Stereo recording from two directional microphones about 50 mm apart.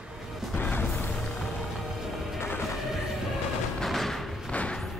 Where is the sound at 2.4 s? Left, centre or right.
Left.